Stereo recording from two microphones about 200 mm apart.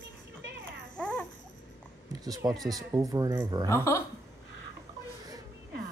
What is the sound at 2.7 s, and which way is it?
Speech, 20° right (ahead or behind).